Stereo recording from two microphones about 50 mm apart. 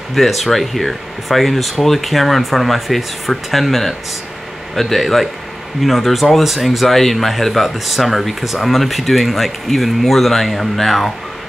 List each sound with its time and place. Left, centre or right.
0.1 s speech: centre